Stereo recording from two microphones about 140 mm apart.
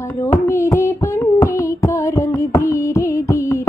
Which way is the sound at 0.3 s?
20° left (ahead or behind).